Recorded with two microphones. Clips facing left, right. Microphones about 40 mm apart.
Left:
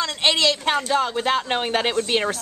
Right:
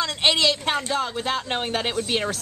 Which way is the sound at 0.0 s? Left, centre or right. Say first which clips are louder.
Left 1 dB; centre.